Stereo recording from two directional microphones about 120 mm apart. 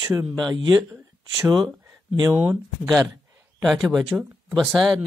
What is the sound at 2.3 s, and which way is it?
Speech, 20° right (ahead or behind).